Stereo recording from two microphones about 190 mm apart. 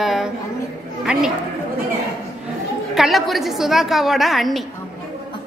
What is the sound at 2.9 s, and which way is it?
A woman's voice, centre (ahead or behind).